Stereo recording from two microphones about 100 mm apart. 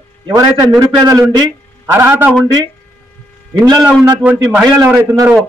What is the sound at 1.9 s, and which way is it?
Speech, 25° right (ahead or behind).